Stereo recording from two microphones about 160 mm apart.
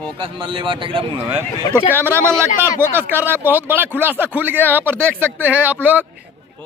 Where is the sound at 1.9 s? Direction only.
15° right (ahead or behind).